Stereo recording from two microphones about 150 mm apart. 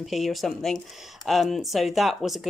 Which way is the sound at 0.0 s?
Centre (ahead or behind).